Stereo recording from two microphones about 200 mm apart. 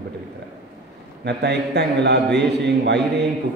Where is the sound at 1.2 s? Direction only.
55° right (ahead or behind).